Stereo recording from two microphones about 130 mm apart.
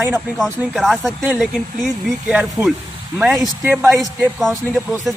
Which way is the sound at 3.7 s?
15° right (ahead or behind).